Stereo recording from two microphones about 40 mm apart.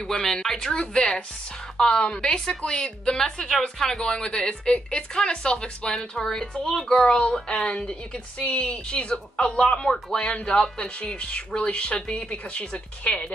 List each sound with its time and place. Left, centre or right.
0.0 s speech: centre
0.7 s a woman's voice: centre
7.1 s a woman's voice: left